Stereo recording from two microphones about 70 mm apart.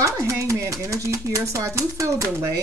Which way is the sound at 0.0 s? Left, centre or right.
Right.